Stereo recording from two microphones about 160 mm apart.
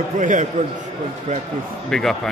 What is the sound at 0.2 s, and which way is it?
Speech, 50° right (ahead or behind).